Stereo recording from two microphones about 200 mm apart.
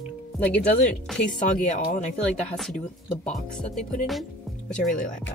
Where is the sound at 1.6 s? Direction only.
40° left (ahead or behind).